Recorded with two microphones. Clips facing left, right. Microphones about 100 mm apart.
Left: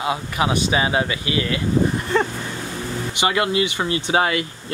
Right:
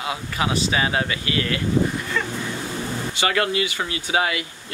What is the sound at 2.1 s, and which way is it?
Vehicle, 35° left (ahead or behind).